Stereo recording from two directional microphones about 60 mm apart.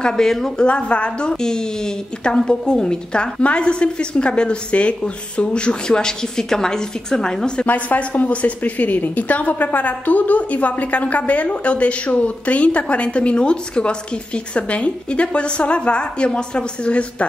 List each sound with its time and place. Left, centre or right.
0.0 s a woman's voice: centre
0.7 s a woman's voice: centre
7.6 s a woman's voice: left